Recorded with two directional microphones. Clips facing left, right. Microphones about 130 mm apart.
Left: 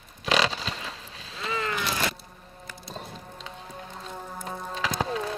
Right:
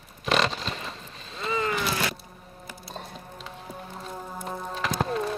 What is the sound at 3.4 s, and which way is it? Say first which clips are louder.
Music: right 2 dB; 5° right (ahead or behind).